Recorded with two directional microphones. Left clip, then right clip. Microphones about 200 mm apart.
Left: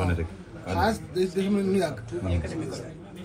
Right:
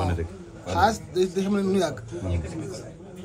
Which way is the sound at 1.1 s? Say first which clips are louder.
Right 2 dB; 25° right (ahead or behind).